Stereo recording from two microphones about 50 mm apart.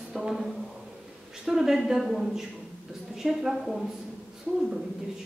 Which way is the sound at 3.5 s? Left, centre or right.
Centre.